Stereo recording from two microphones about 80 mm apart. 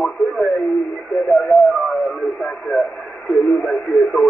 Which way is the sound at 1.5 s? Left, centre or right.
Centre.